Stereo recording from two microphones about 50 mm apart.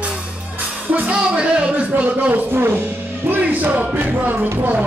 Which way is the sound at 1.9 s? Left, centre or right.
Right.